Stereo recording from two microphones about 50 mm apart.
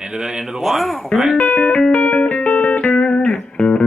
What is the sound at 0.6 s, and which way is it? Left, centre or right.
Speech, centre.